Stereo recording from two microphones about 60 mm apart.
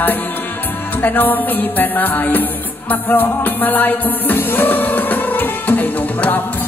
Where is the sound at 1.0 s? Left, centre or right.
Left.